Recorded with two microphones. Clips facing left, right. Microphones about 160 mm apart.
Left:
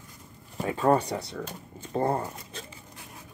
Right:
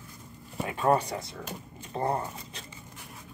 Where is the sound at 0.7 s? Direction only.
30° left (ahead or behind).